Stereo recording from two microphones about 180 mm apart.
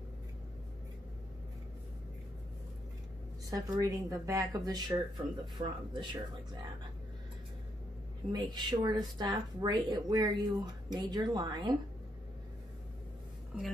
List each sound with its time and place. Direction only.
3.4 s speech: 20° right (ahead or behind)
8.3 s speech: 25° right (ahead or behind)
13.5 s a woman's voice: 5° right (ahead or behind)